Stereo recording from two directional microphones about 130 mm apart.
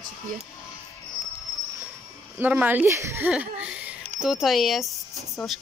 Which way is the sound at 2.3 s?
15° right (ahead or behind).